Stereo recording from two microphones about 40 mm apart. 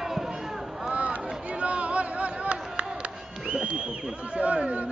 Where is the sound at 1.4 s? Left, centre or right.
Right.